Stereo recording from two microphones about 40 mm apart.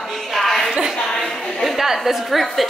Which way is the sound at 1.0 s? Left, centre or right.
Centre.